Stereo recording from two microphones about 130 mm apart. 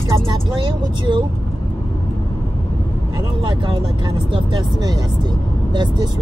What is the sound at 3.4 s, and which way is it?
Speech, 35° right (ahead or behind).